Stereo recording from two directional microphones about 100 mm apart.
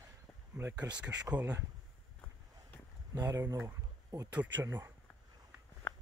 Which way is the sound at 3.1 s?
35° right (ahead or behind).